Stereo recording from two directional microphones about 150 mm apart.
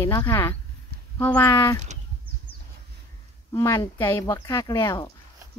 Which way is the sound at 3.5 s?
25° left (ahead or behind).